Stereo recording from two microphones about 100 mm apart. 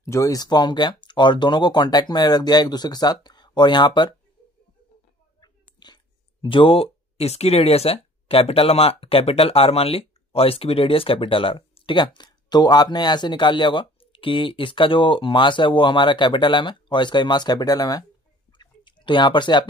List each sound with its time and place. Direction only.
0.0 s speech: 30° left (ahead or behind); by 4.1 s 50° left (ahead or behind)
5.4 s whispering: 45° left (ahead or behind)
6.4 s speech: 60° left (ahead or behind); by 18.0 s 40° left (ahead or behind)
18.6 s a sound: 55° left (ahead or behind)